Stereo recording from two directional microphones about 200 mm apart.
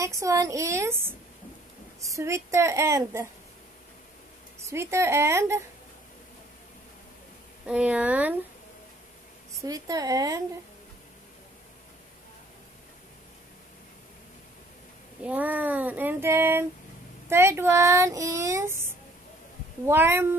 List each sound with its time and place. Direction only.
0.0 s speech: 15° right (ahead or behind)
2.1 s speech: 15° right (ahead or behind)
4.6 s speech: 15° right (ahead or behind)
7.6 s speech: 5° right (ahead or behind)
9.6 s speech: 20° right (ahead or behind)
15.2 s speech: 10° right (ahead or behind)
19.9 s speech: 10° right (ahead or behind)